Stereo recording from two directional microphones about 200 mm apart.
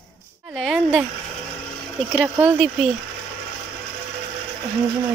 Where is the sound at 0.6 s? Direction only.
5° right (ahead or behind).